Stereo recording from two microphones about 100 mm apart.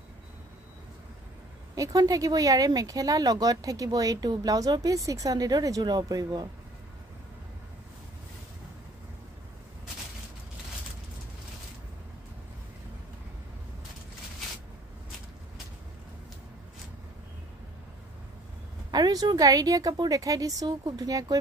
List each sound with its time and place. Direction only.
1.8 s speech: 40° right (ahead or behind)
18.9 s speech: 45° right (ahead or behind)